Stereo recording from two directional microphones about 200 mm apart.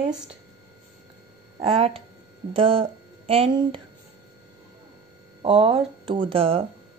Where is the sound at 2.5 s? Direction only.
25° right (ahead or behind).